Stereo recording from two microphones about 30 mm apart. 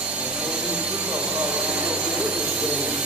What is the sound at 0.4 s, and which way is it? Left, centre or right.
Jet engine, right.